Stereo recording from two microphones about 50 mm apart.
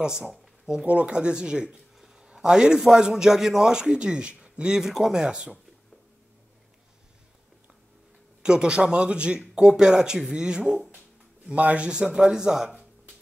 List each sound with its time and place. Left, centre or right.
0.0 s a man's voice: centre
5.2 s speech: centre
8.4 s speech: centre
11.5 s speech: right